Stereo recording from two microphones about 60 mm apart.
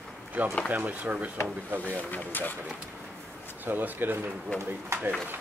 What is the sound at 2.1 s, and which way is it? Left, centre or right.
Speech, left.